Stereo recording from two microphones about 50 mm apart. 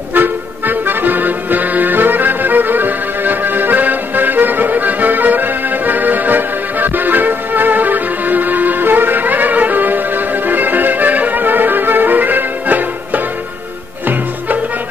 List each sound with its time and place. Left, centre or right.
0.1 s music: right